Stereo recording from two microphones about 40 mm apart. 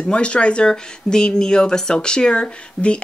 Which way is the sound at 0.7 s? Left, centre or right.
Centre.